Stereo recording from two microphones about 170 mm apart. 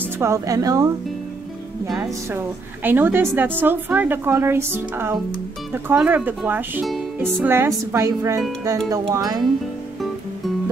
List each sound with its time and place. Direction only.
0.2 s speech: 20° right (ahead or behind)
1.9 s a woman's voice: 10° right (ahead or behind)